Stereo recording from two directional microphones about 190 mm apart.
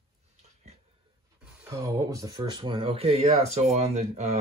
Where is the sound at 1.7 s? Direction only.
15° right (ahead or behind); by 4.3 s 35° right (ahead or behind).